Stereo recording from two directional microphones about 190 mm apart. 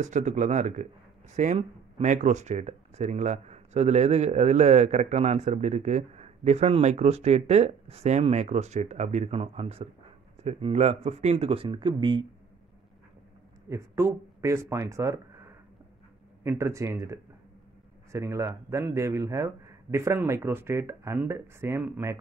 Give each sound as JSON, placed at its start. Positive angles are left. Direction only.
{"t": 0.0, "sound": "speech", "side_deg": -40}
{"t": 13.7, "sound": "a man's voice", "side_deg": -15}